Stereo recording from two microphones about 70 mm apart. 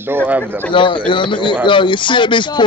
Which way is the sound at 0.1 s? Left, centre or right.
Right.